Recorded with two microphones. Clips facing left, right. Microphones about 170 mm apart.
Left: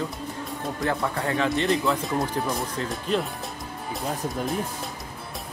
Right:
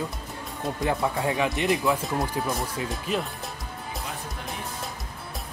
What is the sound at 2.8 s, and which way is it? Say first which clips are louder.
Speech: left 4 dB; 5° right (ahead or behind).